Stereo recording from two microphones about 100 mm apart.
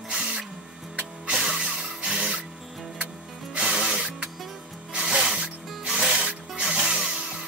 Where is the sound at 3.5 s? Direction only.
5° right (ahead or behind).